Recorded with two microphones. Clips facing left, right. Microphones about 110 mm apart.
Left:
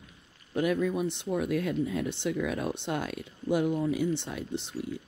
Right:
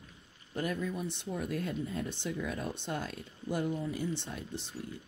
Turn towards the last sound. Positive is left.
turn(degrees=70)  # may be behind; listen again after turning